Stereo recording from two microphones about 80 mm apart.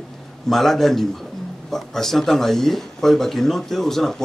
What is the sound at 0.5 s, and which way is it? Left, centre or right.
Speech, centre.